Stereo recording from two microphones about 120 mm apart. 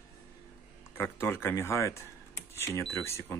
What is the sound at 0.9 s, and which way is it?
Speech, 20° left (ahead or behind).